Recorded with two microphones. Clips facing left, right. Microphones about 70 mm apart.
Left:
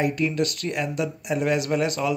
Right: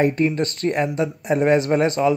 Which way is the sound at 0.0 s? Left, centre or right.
Right.